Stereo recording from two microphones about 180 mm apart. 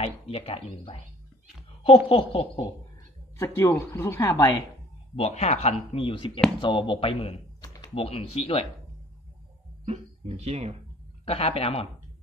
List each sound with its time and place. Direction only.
0.0 s speech: 35° left (ahead or behind)
3.3 s speech: 15° left (ahead or behind)
5.1 s speech: 35° left (ahead or behind)
9.8 s speech: 35° right (ahead or behind)
11.2 s speech: 30° left (ahead or behind)